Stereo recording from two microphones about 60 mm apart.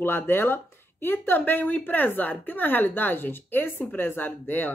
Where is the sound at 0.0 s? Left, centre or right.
Left.